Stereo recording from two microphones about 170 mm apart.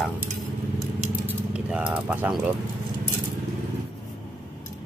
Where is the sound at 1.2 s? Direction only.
5° right (ahead or behind).